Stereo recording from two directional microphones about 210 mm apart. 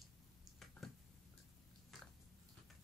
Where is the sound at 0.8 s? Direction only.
Centre (ahead or behind).